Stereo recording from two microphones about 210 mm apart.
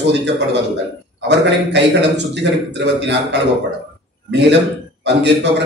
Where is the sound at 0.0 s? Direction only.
60° right (ahead or behind).